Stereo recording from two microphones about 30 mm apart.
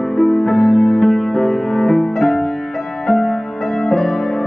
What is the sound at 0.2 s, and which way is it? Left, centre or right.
Music, centre.